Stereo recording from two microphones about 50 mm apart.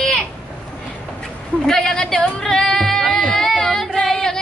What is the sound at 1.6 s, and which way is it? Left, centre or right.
Speech, centre.